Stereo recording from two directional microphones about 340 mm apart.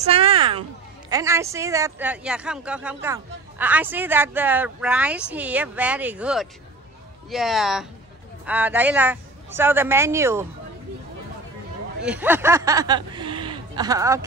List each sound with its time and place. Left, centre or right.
0.0 s speech: centre
12.0 s speech: centre